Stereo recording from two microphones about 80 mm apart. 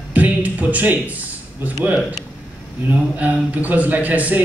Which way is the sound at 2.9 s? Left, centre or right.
Right.